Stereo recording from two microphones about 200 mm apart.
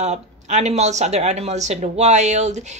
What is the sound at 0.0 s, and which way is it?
Speech, 35° right (ahead or behind).